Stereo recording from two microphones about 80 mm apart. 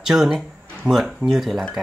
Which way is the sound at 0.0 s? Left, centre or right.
Centre.